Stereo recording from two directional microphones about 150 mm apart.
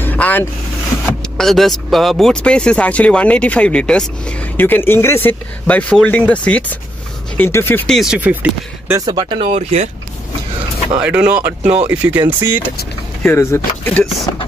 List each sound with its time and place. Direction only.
0.0 s vehicle: 10° left (ahead or behind)
1.4 s speech: centre (ahead or behind)
7.9 s speech: 5° right (ahead or behind)
9.0 s speech: 30° right (ahead or behind)
9.5 s speech: 50° right (ahead or behind)
11.0 s speech: 10° right (ahead or behind)
13.2 s speech: 15° left (ahead or behind)